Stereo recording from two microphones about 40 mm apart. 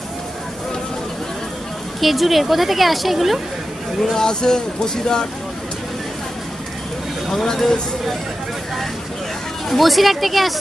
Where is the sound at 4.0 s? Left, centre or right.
Centre.